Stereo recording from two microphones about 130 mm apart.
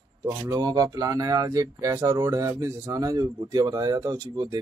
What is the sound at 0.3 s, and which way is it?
Speech, 30° right (ahead or behind).